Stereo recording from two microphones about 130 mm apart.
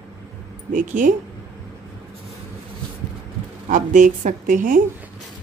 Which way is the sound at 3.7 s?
75° right (ahead or behind).